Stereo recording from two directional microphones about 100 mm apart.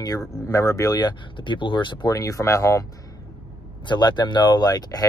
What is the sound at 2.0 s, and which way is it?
Speech, 35° left (ahead or behind).